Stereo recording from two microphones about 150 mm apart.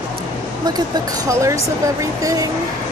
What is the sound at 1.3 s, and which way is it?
Speech, 20° right (ahead or behind).